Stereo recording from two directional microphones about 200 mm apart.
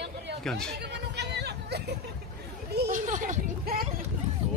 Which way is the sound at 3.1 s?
40° right (ahead or behind).